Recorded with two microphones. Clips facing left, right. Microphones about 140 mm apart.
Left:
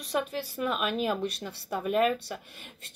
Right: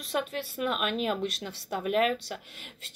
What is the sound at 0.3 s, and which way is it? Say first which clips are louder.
Speech: left 1 dB; 65° right (ahead or behind).